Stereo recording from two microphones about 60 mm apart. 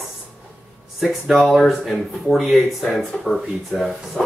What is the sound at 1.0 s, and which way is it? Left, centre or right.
Speech, centre.